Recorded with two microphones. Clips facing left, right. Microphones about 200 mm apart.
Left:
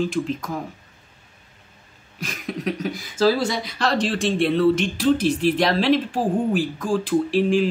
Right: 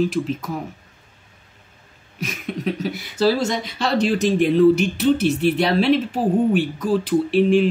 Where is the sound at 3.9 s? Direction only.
35° left (ahead or behind).